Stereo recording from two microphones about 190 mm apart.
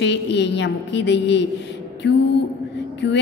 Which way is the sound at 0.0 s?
65° left (ahead or behind).